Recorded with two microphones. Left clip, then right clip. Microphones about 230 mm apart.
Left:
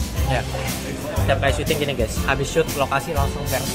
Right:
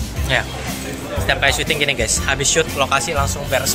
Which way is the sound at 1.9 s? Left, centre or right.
Left.